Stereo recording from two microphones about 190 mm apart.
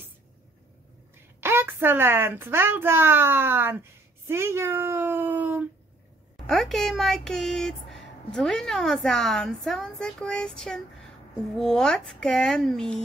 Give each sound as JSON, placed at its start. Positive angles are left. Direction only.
{"t": 1.4, "sound": "speech", "side_deg": -10}
{"t": 6.4, "sound": "speech", "side_deg": 0}